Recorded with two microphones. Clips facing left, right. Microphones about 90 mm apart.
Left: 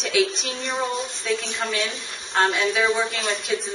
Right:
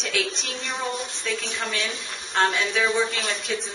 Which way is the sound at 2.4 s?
Centre (ahead or behind).